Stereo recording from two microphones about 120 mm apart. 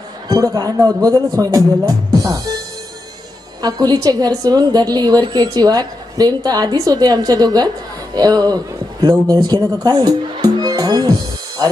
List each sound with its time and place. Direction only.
0.3 s a woman's voice: 30° right (ahead or behind)
3.6 s a woman's voice: 35° right (ahead or behind)
10.6 s music: 35° right (ahead or behind)